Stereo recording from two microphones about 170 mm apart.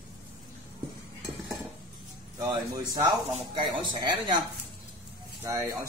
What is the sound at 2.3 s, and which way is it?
A man's voice, 20° right (ahead or behind).